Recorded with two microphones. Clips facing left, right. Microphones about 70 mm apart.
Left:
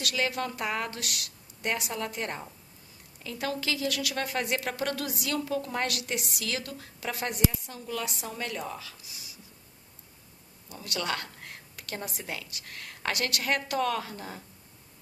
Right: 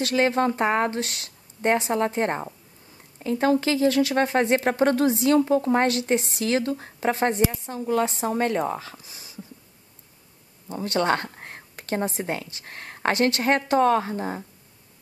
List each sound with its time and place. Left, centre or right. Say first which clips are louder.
0.0 s speech: right 9 dB; right
9.0 s a sound: right 3 dB; right
10.7 s a woman's voice: right 10 dB; right